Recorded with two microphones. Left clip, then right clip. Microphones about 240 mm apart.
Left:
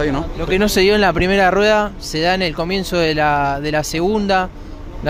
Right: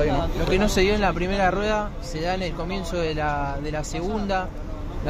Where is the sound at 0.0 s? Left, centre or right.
Left.